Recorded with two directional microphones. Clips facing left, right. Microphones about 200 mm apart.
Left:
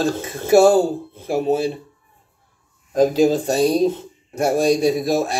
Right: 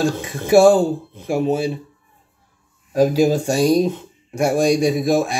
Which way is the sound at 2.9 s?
10° right (ahead or behind).